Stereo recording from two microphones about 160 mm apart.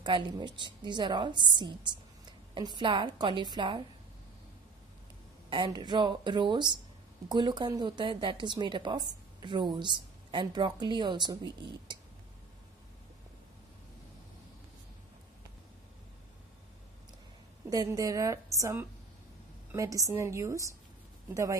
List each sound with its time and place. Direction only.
0.0 s a woman's voice: 30° right (ahead or behind)
5.5 s a woman's voice: 30° right (ahead or behind)
17.6 s a woman's voice: 25° right (ahead or behind)